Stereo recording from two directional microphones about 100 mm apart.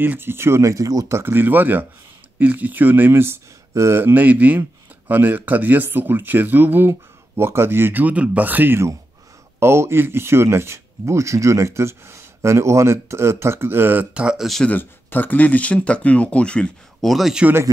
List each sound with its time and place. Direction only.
0.0 s speech: 20° right (ahead or behind)
14.1 s speech: 5° right (ahead or behind)
14.7 s speech: 20° left (ahead or behind); by 17.5 s 5° right (ahead or behind)